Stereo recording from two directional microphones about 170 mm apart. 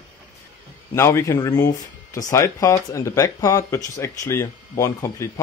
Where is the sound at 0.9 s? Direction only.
15° left (ahead or behind).